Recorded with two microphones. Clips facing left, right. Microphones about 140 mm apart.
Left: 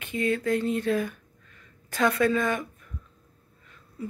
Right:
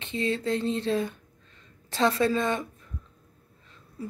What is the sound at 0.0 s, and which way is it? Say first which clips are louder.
Speech: left 2 dB; 25° right (ahead or behind).